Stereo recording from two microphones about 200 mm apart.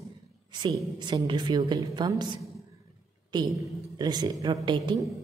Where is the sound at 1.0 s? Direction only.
20° right (ahead or behind).